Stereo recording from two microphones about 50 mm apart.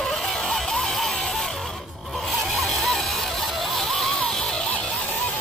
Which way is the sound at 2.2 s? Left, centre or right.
Centre.